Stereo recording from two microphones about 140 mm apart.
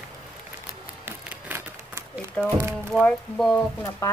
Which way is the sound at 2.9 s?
5° left (ahead or behind).